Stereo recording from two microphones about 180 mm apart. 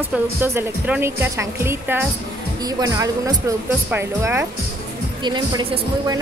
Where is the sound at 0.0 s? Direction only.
10° right (ahead or behind).